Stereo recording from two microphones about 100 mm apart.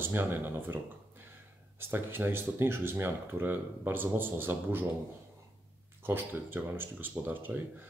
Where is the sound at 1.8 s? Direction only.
20° right (ahead or behind).